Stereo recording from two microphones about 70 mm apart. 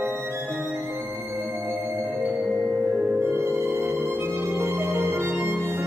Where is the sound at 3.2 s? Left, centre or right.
Right.